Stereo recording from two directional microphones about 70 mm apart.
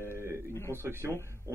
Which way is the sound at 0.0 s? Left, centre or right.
Right.